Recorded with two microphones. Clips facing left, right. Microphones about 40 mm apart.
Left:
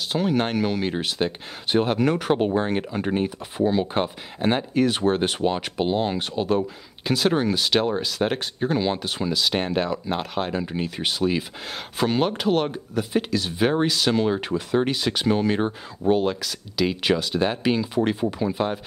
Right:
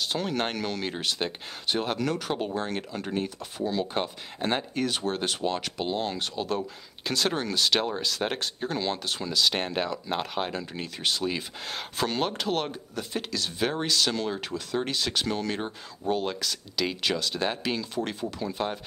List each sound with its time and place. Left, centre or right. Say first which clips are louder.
0.1 s speech: left 10 dB; centre
4.9 s speech: left 7 dB; left; by 10.6 s centre
10.6 s speech: left 5 dB; centre
16.3 s speech: left 5 dB; centre